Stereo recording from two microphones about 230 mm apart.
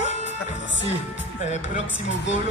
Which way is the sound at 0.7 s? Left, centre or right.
Left.